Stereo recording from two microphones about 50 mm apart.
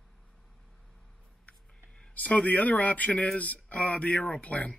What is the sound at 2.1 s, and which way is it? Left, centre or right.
Speech, left.